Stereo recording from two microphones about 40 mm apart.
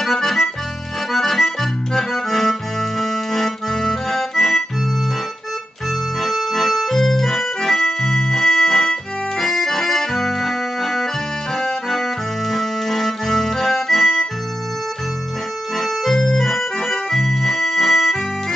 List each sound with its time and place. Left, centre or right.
0.0 s accordion: centre
6.2 s music: centre
9.4 s accordion: centre
15.8 s organ: centre